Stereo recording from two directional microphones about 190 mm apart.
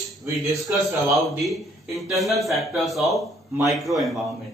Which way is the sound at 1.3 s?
Centre (ahead or behind).